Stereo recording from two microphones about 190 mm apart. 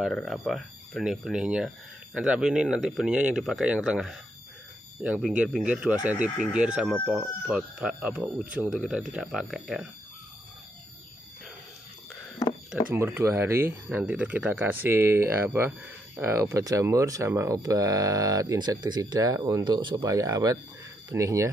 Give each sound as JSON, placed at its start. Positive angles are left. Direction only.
{"t": 0.0, "sound": "speech", "side_deg": 0}
{"t": 12.9, "sound": "speech", "side_deg": -10}